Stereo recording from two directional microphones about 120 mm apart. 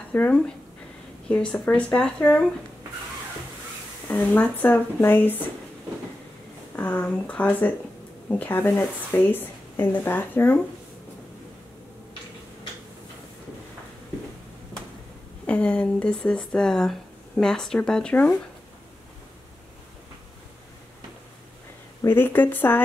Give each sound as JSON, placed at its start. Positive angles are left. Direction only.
{"t": 0.1, "sound": "speech", "side_deg": 15}
{"t": 4.1, "sound": "speech", "side_deg": 15}
{"t": 6.7, "sound": "speech", "side_deg": 15}
{"t": 15.4, "sound": "speech", "side_deg": 10}
{"t": 22.0, "sound": "speech", "side_deg": 15}